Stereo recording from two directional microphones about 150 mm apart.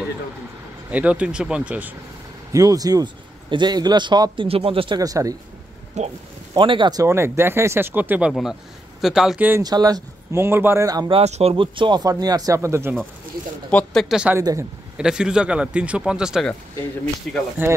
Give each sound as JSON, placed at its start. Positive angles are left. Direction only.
{"t": 0.8, "sound": "speech", "side_deg": -10}
{"t": 2.5, "sound": "speech", "side_deg": -25}
{"t": 6.0, "sound": "speech", "side_deg": -50}
{"t": 6.5, "sound": "speech", "side_deg": -35}
{"t": 8.3, "sound": "speech", "side_deg": 0}
{"t": 9.6, "sound": "speech", "side_deg": -25}
{"t": 11.1, "sound": "speech", "side_deg": -45}
{"t": 13.7, "sound": "speech", "side_deg": 10}
{"t": 14.0, "sound": "speech", "side_deg": -5}
{"t": 14.4, "sound": "speech", "side_deg": -20}
{"t": 15.0, "sound": "speech", "side_deg": -5}